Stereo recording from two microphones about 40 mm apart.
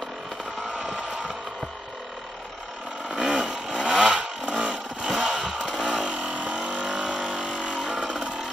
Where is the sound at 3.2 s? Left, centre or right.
Right.